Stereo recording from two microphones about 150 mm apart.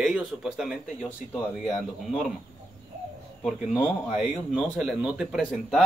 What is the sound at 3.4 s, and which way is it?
Speech, centre (ahead or behind).